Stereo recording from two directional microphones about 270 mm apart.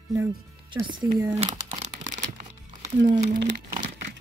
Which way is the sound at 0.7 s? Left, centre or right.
Centre.